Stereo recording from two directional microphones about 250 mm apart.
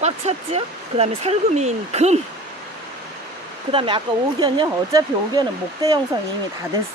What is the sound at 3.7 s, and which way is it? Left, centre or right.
Speech, right.